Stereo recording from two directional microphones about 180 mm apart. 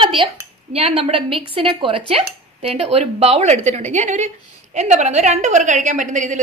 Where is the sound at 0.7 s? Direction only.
35° right (ahead or behind).